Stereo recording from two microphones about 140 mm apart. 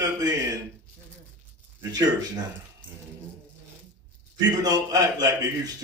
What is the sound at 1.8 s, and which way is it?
Speech, 25° right (ahead or behind).